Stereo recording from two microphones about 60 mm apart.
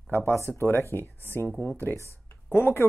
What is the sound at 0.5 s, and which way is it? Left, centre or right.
Speech, left.